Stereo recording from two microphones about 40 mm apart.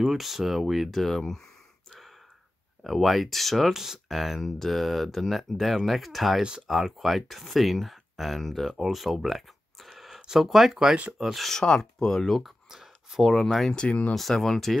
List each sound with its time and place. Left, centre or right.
0.0 s speech: centre
1.9 s gasp: centre
2.8 s speech: centre
3.7 s speech: centre
11.6 s speech: left
12.3 s speech: centre
12.6 s a sound: centre
13.2 s speech: centre
13.7 s speech: left
14.3 s speech: centre